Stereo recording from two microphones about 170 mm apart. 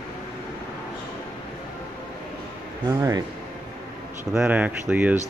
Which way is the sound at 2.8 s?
20° right (ahead or behind).